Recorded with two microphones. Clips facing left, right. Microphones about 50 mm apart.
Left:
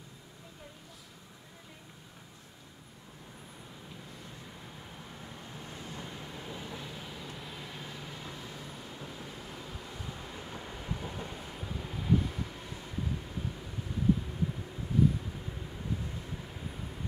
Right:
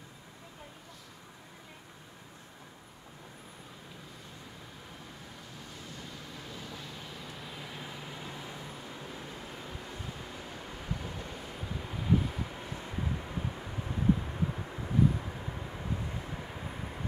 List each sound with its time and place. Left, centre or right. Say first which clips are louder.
5.7 s vehicle: left 3 dB; left; by 8.7 s right
10.9 s vehicle: left 1 dB; centre
12.5 s vehicle: right 2 dB; right